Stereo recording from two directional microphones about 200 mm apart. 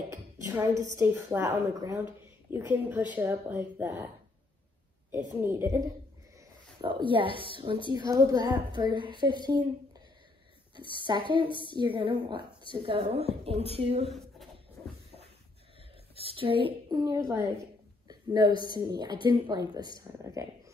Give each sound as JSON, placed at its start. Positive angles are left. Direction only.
{"t": 0.1, "sound": "a woman's voice", "side_deg": -15}
{"t": 5.4, "sound": "speech", "side_deg": -10}
{"t": 6.8, "sound": "a woman's voice", "side_deg": -25}
{"t": 11.1, "sound": "a woman's voice", "side_deg": -25}
{"t": 16.2, "sound": "a woman's voice", "side_deg": -25}
{"t": 18.0, "sound": "a sound", "side_deg": -20}
{"t": 18.7, "sound": "a woman's voice", "side_deg": -20}